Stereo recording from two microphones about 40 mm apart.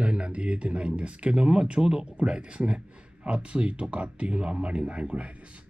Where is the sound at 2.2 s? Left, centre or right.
Right.